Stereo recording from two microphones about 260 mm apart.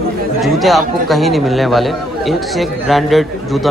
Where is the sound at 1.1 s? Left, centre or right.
Centre.